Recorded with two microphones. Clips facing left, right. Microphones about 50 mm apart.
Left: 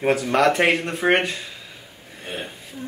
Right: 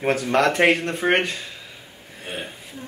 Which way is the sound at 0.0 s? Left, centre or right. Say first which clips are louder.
Left 1 dB; centre.